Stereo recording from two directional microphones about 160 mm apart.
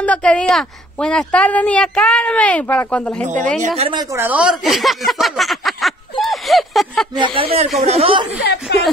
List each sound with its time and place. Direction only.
0.0 s a woman's voice: 5° left (ahead or behind)
3.3 s a woman's voice: 50° right (ahead or behind)
3.9 s speech: 25° right (ahead or behind)
4.2 s speech: 10° right (ahead or behind)
7.3 s speech: 40° right (ahead or behind)
8.3 s speech: 90° left